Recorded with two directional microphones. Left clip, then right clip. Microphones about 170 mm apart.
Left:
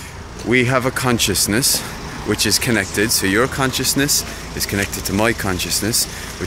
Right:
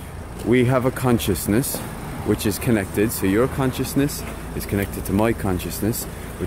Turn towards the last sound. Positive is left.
turn(degrees=-10)  # may be behind; listen again after turning